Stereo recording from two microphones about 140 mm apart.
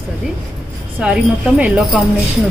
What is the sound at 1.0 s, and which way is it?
Speech, 5° right (ahead or behind).